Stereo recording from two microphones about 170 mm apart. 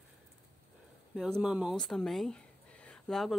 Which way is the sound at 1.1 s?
Centre (ahead or behind).